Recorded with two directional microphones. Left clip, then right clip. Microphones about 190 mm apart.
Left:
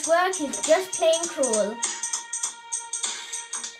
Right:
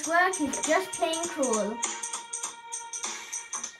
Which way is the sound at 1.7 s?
15° right (ahead or behind).